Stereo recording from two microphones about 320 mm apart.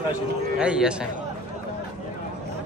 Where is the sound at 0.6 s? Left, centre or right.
Centre.